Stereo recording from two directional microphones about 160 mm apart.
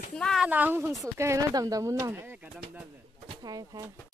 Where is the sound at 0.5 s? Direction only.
10° right (ahead or behind).